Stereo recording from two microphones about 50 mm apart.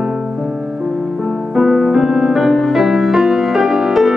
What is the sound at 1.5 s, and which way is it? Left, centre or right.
Music, centre.